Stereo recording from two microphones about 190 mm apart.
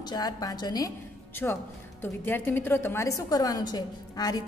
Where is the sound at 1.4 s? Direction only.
10° left (ahead or behind).